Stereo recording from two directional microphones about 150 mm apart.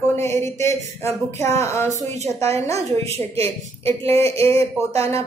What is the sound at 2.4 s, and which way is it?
Speech, 20° left (ahead or behind).